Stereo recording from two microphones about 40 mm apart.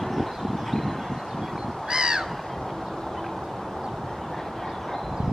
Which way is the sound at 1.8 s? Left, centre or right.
Centre.